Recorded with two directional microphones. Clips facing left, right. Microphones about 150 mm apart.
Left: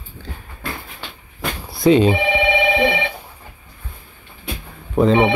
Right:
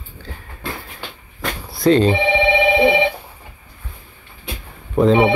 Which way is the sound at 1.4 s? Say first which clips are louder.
Left 1 dB; centre (ahead or behind).